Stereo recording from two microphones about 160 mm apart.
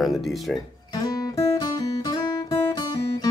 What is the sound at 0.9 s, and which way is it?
Guitar, 25° left (ahead or behind).